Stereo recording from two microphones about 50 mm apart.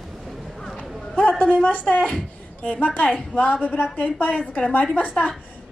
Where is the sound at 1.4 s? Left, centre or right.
Left.